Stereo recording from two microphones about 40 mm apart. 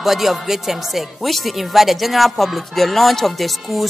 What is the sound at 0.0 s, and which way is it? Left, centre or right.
Speech, centre.